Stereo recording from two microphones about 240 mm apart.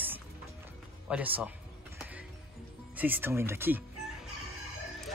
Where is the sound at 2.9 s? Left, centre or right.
Centre.